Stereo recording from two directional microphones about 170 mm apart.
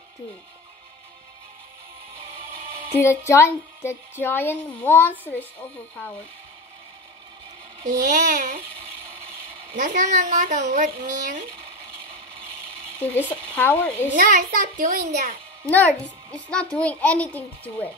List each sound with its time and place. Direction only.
3.0 s a woman's voice: 15° left (ahead or behind)
7.8 s a child's voice: 50° right (ahead or behind)
9.8 s a child's voice: 50° right (ahead or behind)
13.0 s a woman's voice: 10° left (ahead or behind)
14.1 s a child's voice: 50° right (ahead or behind)
16.3 s a woman's voice: 5° left (ahead or behind)